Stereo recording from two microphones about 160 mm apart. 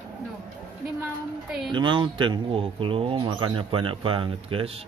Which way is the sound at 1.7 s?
30° right (ahead or behind).